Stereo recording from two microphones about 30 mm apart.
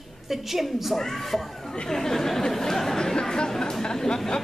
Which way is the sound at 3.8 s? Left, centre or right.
Left.